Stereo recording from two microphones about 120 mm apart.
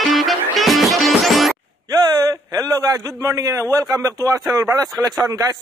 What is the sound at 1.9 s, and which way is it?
A man's voice, 30° right (ahead or behind).